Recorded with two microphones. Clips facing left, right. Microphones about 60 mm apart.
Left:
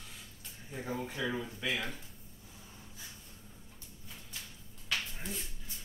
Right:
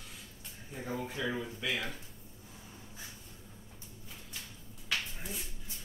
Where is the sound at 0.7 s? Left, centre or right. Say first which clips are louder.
Even; centre.